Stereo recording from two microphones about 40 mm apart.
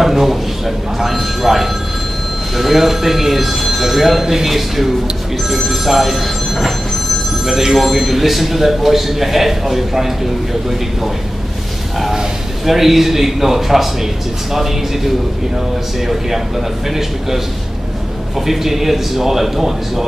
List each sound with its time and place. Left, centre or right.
0.0 s a man's voice: centre
12.6 s a man's voice: centre
16.1 s a man's voice: centre
18.4 s a man's voice: centre